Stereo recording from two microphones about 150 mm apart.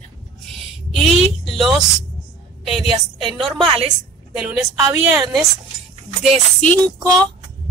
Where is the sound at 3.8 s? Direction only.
5° right (ahead or behind).